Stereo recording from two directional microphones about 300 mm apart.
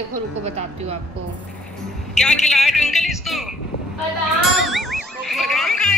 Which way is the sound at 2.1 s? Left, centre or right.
Centre.